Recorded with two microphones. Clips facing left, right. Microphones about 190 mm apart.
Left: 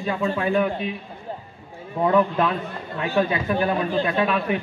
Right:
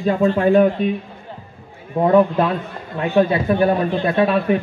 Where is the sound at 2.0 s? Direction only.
30° right (ahead or behind).